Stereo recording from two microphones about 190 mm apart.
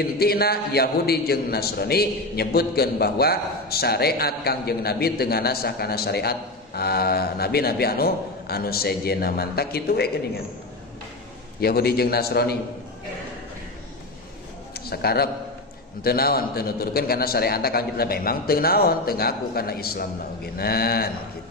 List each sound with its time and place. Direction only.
0.0 s a man's voice: 55° left (ahead or behind)
11.6 s a man's voice: 55° left (ahead or behind)
14.9 s a man's voice: 55° left (ahead or behind)